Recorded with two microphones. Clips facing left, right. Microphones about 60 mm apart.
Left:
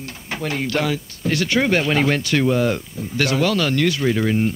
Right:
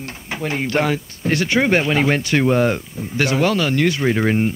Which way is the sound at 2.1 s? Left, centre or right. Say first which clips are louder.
Right 1 dB; right.